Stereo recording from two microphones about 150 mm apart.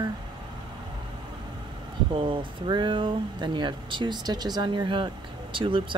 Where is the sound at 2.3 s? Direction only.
30° right (ahead or behind).